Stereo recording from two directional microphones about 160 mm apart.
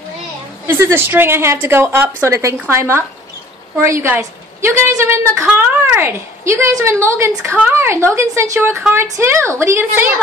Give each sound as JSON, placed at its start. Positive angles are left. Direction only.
{"t": 0.7, "sound": "a woman's voice", "side_deg": -15}